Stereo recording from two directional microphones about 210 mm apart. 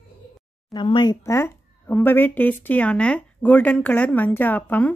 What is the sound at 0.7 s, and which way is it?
Speech, 20° left (ahead or behind).